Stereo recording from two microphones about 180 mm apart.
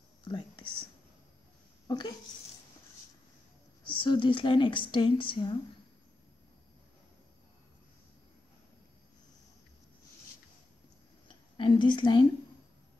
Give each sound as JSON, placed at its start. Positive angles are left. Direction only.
{"t": 0.3, "sound": "whispering", "side_deg": 25}
{"t": 1.9, "sound": "speech", "side_deg": 25}
{"t": 3.8, "sound": "a woman's voice", "side_deg": 25}
{"t": 11.5, "sound": "speech", "side_deg": 25}